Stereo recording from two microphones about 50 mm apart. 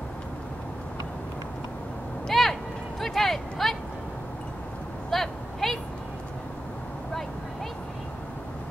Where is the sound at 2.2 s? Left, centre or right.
Centre.